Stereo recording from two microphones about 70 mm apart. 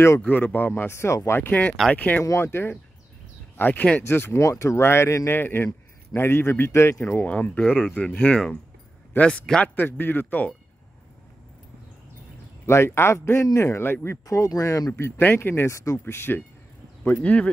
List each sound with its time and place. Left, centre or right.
0.2 s speech: left
0.9 s speech: left
1.5 s speech: left
2.2 s speech: left
4.4 s speech: left
12.6 s speech: left
14.2 s speech: left
17.0 s speech: left